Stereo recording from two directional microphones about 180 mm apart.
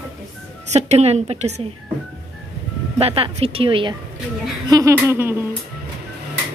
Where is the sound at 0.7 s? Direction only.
35° right (ahead or behind).